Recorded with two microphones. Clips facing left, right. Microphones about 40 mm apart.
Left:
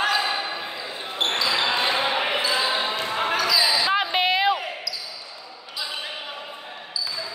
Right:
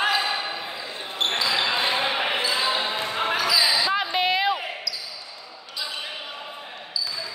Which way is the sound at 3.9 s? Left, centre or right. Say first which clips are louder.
Left 1 dB; left.